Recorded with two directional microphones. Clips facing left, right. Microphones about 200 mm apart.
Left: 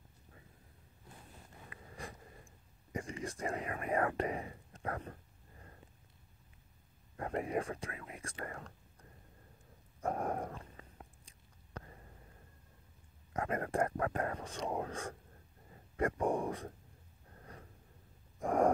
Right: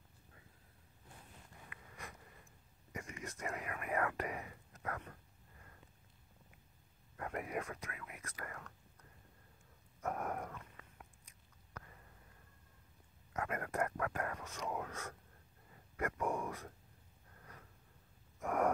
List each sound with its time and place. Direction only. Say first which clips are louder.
1.7 s a sound: left 6 dB; 30° left (ahead or behind)
7.2 s speech: left 5 dB; 30° left (ahead or behind)
9.9 s chewing: left 4 dB; 30° left (ahead or behind)
13.3 s speech: left 5 dB; 30° left (ahead or behind)
17.3 s gasp: left 5 dB; 30° left (ahead or behind)